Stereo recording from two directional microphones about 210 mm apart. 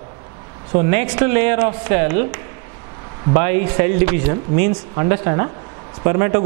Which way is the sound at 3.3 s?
15° right (ahead or behind).